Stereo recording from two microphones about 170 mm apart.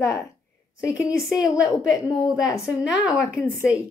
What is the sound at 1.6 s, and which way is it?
Speech, 20° left (ahead or behind).